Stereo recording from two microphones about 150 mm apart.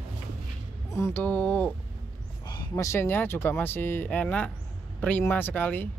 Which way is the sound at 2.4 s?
30° left (ahead or behind).